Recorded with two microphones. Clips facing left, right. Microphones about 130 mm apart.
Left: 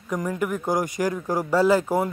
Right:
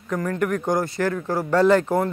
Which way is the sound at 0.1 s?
10° left (ahead or behind).